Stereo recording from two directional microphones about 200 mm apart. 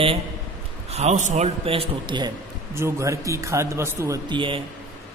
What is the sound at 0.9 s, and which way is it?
A man's voice, 35° right (ahead or behind).